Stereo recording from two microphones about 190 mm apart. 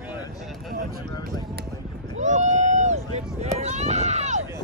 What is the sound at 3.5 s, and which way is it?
Run, 35° right (ahead or behind).